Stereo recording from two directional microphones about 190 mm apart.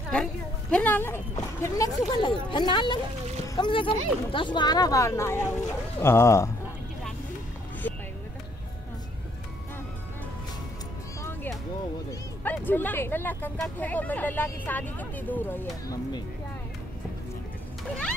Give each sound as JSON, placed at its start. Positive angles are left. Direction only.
{"t": 0.1, "sound": "a woman's voice", "side_deg": 5}
{"t": 7.8, "sound": "vehicle", "side_deg": 10}
{"t": 12.1, "sound": "speech", "side_deg": 10}